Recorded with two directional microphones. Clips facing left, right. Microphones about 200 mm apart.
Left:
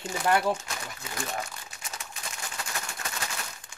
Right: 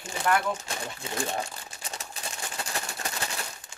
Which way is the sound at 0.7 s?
30° right (ahead or behind).